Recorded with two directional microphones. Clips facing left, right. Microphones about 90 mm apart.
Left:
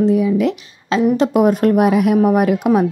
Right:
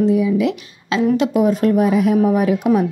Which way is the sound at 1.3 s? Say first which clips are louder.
Left 2 dB; 55° left (ahead or behind).